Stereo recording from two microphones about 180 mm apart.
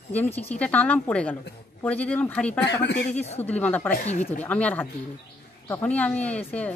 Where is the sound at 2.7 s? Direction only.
70° left (ahead or behind).